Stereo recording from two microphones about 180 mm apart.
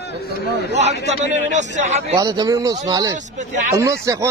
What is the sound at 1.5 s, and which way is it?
Speech, 40° right (ahead or behind).